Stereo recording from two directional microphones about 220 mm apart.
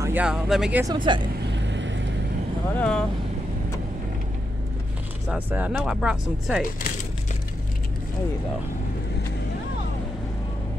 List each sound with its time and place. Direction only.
0.0 s speech: 5° right (ahead or behind)
0.9 s speech: 20° right (ahead or behind)
1.5 s vehicle: 55° right (ahead or behind)
2.7 s speech: 5° left (ahead or behind)
5.3 s speech: 5° right (ahead or behind)